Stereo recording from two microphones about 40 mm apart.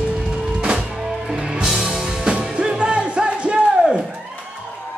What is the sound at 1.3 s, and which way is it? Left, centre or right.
Music, right.